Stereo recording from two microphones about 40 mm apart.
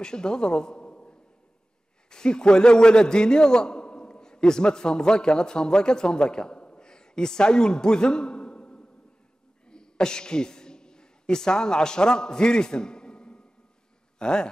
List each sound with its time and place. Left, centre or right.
0.0 s a man's voice: centre
9.7 s a sound: centre
14.1 s speech: centre